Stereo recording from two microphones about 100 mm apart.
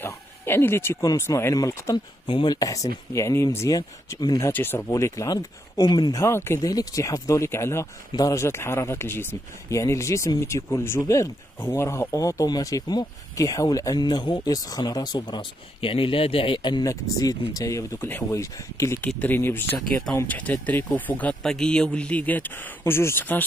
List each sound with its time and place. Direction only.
0.0 s speech: 25° left (ahead or behind)
2.2 s speech: 60° left (ahead or behind)
2.5 s speech: 35° left (ahead or behind)
4.5 s speech: 20° left (ahead or behind); by 6.1 s 45° left (ahead or behind)
6.1 s speech: 25° left (ahead or behind)
6.6 s speech: 35° left (ahead or behind); by 16.8 s 55° left (ahead or behind)
16.8 s speech: 35° left (ahead or behind)
17.9 s speech: 20° left (ahead or behind)
18.3 s speech: 35° left (ahead or behind)
19.1 s a man's voice: 20° left (ahead or behind)